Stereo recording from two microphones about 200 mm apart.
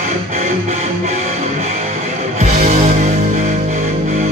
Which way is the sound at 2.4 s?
35° right (ahead or behind).